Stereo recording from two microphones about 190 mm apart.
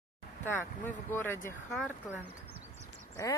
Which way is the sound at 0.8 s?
10° left (ahead or behind).